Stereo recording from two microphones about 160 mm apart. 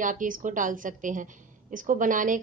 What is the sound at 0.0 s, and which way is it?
A woman's voice, 55° right (ahead or behind).